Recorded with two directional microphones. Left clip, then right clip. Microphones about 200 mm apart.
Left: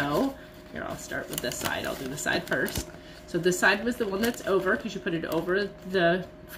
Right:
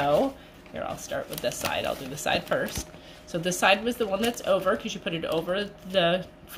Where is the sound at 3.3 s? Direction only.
30° right (ahead or behind).